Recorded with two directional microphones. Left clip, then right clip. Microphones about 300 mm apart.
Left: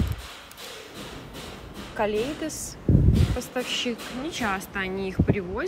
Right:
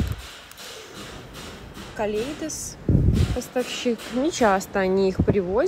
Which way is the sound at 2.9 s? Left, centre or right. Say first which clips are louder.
Even; left.